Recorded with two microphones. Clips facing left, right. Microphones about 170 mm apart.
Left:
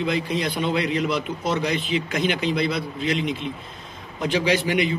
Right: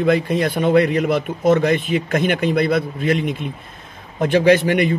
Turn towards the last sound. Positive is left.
turn(degrees=-55)  # may be behind; listen again after turning